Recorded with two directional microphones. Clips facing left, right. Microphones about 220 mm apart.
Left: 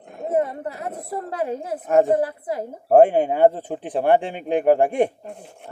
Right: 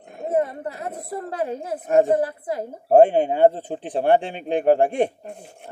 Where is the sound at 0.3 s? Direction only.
35° right (ahead or behind).